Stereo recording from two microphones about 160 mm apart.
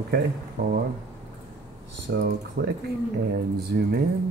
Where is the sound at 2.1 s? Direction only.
80° right.